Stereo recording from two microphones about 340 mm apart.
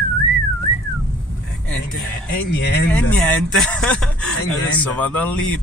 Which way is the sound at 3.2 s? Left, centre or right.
Centre.